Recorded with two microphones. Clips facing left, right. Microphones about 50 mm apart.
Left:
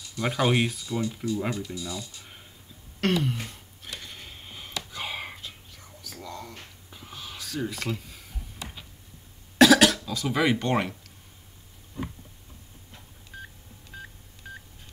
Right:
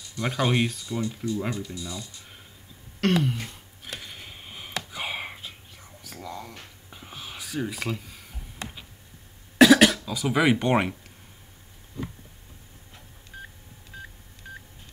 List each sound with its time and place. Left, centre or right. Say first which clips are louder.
0.1 s speech: left 1 dB; centre
2.1 s a sound: even; centre
4.9 s whispering: right 1 dB; centre
9.6 s throat clearing: right 1 dB; centre
13.3 s telephone dialing: even; centre
13.9 s telephone dialing: even; centre